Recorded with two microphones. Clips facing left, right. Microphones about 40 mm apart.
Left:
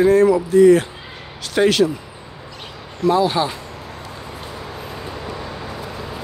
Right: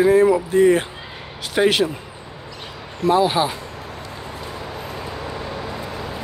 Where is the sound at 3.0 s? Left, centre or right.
Centre.